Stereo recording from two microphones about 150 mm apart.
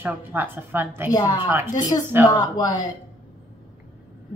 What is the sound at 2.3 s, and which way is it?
Speech, 25° left (ahead or behind).